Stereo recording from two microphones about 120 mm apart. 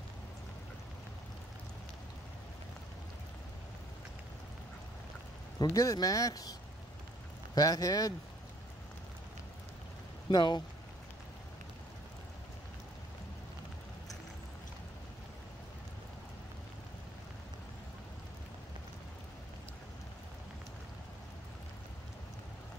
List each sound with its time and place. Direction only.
5.6 s speech: 30° left (ahead or behind)
7.5 s speech: 30° left (ahead or behind)
10.3 s speech: 35° left (ahead or behind)